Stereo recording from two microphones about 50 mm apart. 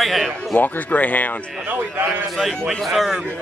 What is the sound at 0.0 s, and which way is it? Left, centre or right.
Speech, centre.